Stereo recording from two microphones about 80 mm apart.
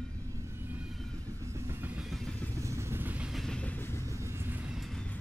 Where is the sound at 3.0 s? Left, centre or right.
Centre.